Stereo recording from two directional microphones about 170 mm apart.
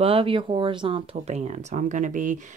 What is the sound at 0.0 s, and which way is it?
Speech, 30° right (ahead or behind).